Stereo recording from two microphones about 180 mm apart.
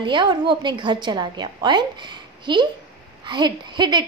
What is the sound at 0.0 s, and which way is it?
A woman's voice, 25° right (ahead or behind).